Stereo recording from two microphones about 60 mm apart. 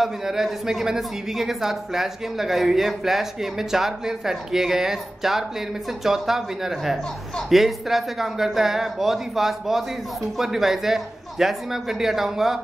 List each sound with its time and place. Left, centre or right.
0.0 s a woman's voice: centre